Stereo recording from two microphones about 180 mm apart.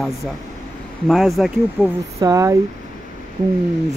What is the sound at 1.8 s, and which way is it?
Speech, 10° right (ahead or behind).